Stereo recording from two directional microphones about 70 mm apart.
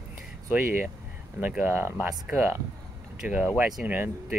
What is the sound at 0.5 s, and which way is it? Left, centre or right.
Speech, right.